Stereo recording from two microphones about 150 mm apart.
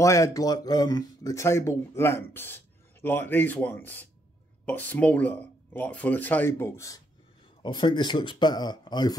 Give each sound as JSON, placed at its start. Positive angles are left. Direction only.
{"t": 0.0, "sound": "speech", "side_deg": 20}
{"t": 7.6, "sound": "speech", "side_deg": 30}